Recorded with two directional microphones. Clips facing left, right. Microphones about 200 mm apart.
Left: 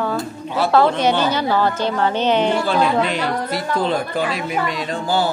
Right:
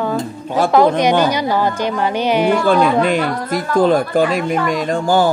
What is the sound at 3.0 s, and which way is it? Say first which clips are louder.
Speech: right 4 dB; 50° right (ahead or behind).